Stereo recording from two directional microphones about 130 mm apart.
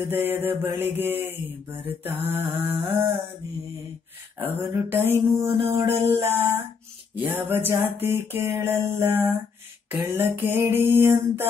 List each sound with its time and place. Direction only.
0.0 s mantra: 15° right (ahead or behind)
4.4 s mantra: 15° right (ahead or behind)